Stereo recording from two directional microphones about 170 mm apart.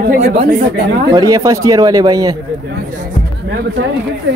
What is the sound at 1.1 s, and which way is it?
Speech, 20° right (ahead or behind).